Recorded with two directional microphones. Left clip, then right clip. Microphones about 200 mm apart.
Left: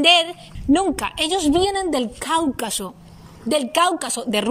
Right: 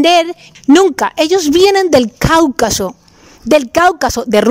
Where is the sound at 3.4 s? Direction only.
90° right.